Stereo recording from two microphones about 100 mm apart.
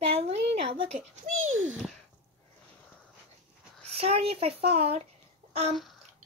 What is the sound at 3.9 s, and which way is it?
A child's voice, 80° right.